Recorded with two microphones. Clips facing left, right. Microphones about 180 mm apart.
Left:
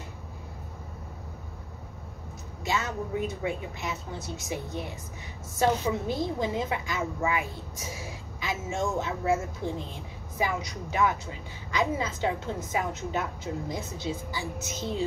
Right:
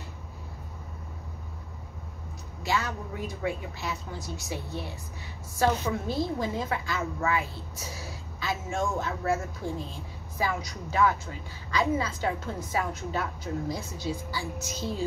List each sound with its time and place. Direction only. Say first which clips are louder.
2.6 s a woman's voice: even; 20° left (ahead or behind)